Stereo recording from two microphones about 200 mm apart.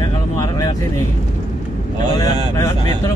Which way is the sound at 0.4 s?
15° left (ahead or behind).